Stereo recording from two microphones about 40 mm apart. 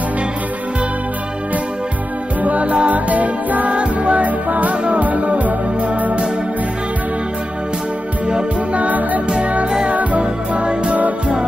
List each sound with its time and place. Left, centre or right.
2.4 s music: right
8.7 s music: right